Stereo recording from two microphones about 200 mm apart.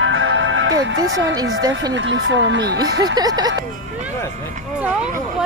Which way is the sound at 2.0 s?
65° right (ahead or behind).